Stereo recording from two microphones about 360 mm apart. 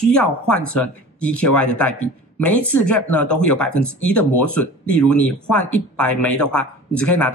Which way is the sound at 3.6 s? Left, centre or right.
Left.